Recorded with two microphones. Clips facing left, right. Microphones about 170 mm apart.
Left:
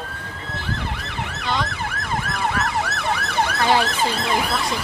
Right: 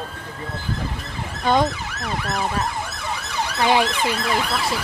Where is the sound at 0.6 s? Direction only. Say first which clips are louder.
Left 2 dB; 70° left (ahead or behind).